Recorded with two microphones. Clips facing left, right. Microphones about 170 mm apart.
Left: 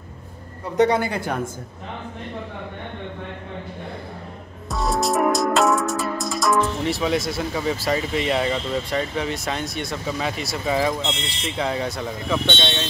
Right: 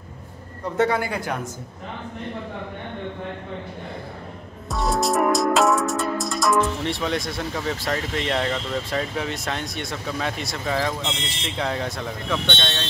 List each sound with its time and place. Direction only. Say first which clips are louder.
0.7 s a woman's voice: left 3 dB; 20° left (ahead or behind)
4.6 s music: even; centre (ahead or behind)
11.4 s speech: left 2 dB; centre (ahead or behind)